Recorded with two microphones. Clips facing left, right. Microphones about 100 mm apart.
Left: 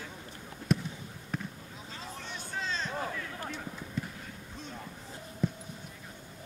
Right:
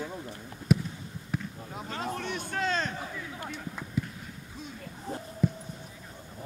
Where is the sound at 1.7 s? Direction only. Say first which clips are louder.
Right 9 dB; 60° right (ahead or behind).